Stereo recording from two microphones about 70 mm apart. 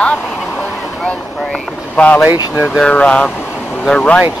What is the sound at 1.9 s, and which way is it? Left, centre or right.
Speech, centre.